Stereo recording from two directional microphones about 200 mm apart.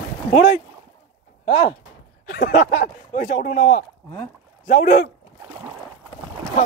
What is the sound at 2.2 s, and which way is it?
Speech, 45° left (ahead or behind).